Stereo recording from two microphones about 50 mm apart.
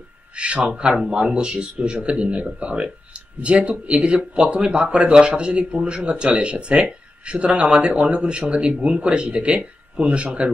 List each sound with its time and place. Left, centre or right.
0.4 s a man's voice: right